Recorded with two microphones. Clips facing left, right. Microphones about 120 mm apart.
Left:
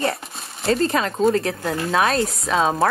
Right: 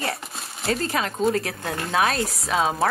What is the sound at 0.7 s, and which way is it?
Speech, 30° left (ahead or behind).